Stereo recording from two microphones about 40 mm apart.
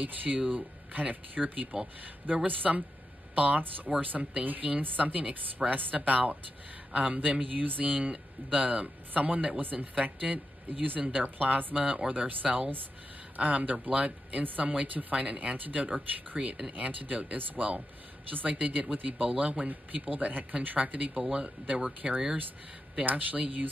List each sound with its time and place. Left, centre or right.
0.0 s speech: right
13.4 s speech: right
14.4 s speech: right
16.3 s speech: right
16.7 s speech: right
21.3 s speech: right
23.0 s speech: right